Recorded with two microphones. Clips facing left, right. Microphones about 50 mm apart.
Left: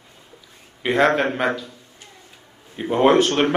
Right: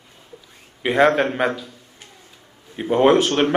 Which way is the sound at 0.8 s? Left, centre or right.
Centre.